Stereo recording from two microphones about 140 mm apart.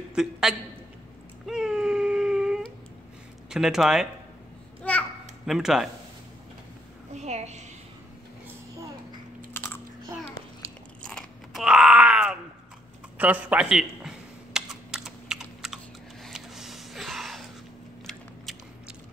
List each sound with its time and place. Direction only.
0.1 s a man's voice: 5° right (ahead or behind)
1.4 s a sound: 5° right (ahead or behind)
3.4 s speech: 5° right (ahead or behind)
4.8 s a sound: 10° left (ahead or behind)
5.5 s speech: 5° right (ahead or behind)
7.2 s a woman's voice: 55° right (ahead or behind)
11.0 s biting: 5° left (ahead or behind)
13.2 s computer keyboard: 10° right (ahead or behind)
16.3 s a sound: centre (ahead or behind)
18.0 s biting: centre (ahead or behind)